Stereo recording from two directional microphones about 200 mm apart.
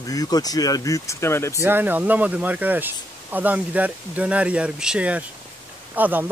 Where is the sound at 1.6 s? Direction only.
10° right (ahead or behind).